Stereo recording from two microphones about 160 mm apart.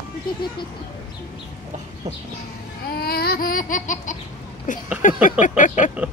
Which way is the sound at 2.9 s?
75° left (ahead or behind).